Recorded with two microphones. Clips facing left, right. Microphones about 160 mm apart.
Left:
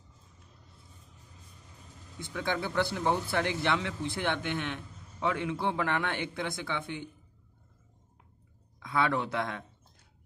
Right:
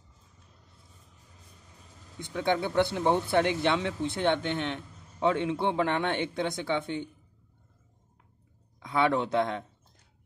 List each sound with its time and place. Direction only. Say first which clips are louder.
2.1 s speech: right 5 dB; 20° right (ahead or behind)
8.7 s speech: right 3 dB; 20° right (ahead or behind)